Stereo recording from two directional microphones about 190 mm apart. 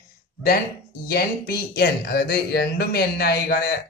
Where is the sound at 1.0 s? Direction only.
55° left (ahead or behind).